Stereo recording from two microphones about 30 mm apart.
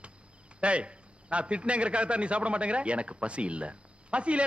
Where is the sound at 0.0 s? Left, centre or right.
Right.